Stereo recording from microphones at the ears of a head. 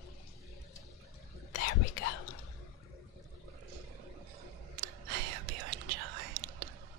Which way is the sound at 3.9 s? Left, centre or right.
Right.